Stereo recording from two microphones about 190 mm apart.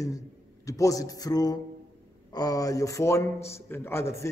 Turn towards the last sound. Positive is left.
turn(degrees=15)  # may be behind; listen again after turning